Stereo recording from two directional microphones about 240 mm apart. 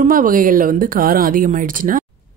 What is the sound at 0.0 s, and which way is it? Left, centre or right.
Speech, right.